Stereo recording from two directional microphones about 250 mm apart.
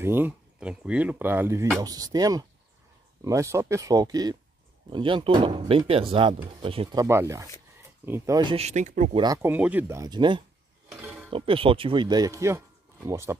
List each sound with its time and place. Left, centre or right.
0.0 s speech: centre; by 9.2 s right
9.2 s speech: centre
10.9 s a sound: centre
11.2 s speech: right